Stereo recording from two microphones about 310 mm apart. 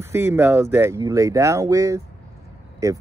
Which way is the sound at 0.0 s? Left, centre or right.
Centre.